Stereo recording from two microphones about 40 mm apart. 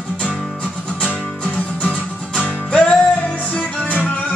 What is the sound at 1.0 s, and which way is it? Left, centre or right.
Music, left.